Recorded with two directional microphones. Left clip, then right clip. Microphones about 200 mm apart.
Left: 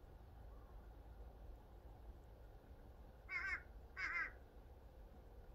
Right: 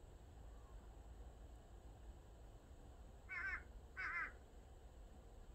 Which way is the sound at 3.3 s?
35° left (ahead or behind).